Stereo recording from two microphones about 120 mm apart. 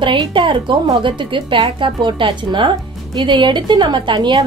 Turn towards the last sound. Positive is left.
turn(degrees=-40)  # may be behind; listen again after turning